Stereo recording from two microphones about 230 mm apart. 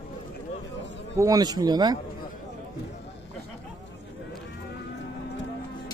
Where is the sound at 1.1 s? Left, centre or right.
Centre.